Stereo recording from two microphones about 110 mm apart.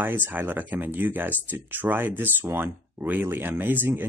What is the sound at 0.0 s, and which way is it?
Speech, 20° right (ahead or behind).